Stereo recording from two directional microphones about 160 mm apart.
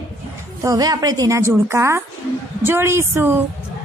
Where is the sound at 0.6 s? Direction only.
20° right (ahead or behind).